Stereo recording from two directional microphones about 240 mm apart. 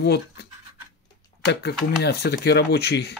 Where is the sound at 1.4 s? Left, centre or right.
Left.